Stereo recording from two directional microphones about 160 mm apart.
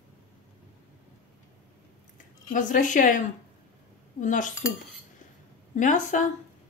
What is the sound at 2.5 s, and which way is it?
A woman's voice, 55° left (ahead or behind).